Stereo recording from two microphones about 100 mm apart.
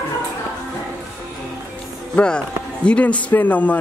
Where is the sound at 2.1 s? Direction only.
10° left (ahead or behind).